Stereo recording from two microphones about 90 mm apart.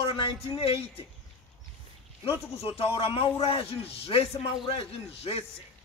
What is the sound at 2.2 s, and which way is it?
A man's voice, 90° left.